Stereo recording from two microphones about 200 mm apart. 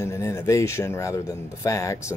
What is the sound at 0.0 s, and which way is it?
Speech, 15° left (ahead or behind).